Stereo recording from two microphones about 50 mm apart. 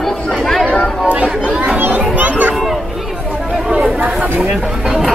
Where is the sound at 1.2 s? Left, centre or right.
Centre.